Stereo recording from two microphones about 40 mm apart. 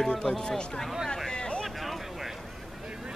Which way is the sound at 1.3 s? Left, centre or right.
Left.